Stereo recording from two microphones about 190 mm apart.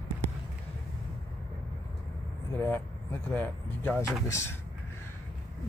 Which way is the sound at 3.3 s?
10° left (ahead or behind).